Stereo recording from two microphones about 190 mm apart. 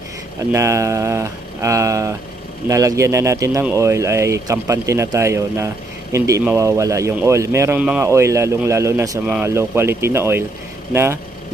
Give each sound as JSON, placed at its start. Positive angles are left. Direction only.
{"t": 0.5, "sound": "speech", "side_deg": -15}